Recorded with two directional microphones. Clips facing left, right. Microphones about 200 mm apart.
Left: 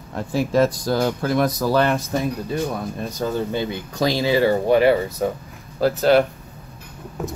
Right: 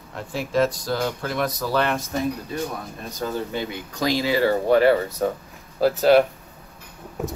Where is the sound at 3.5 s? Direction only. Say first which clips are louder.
Left 4 dB; 25° left (ahead or behind).